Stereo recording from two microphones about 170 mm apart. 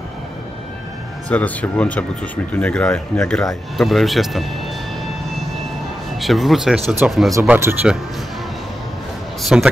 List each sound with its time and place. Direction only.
1.3 s speech: 10° left (ahead or behind)
6.1 s speech: centre (ahead or behind)
9.4 s speech: centre (ahead or behind)